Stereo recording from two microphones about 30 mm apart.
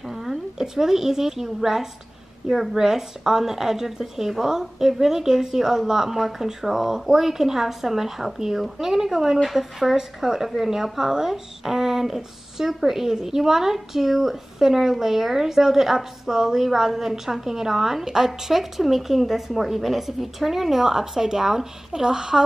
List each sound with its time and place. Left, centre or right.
0.0 s a woman's voice: centre